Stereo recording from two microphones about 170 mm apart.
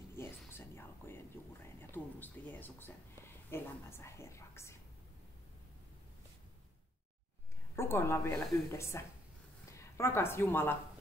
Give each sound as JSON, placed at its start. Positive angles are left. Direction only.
{"t": 0.1, "sound": "whispering", "side_deg": 15}
{"t": 3.4, "sound": "a sound", "side_deg": 15}
{"t": 7.7, "sound": "a woman's voice", "side_deg": 15}